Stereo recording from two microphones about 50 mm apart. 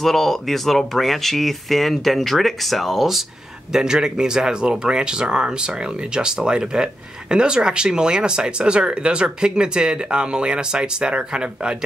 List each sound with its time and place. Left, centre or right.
0.0 s speech: centre
3.7 s speech: centre